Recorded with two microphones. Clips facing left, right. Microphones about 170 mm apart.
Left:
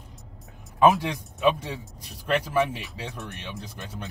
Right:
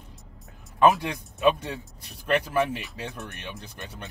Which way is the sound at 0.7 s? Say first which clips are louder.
Left 1 dB; centre (ahead or behind).